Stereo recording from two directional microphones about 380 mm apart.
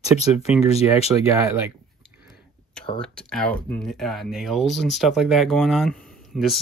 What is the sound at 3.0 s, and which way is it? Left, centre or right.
Speech, centre.